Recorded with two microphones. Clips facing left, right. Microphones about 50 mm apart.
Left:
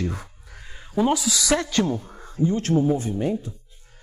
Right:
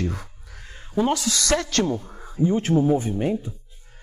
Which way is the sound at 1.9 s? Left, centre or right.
Centre.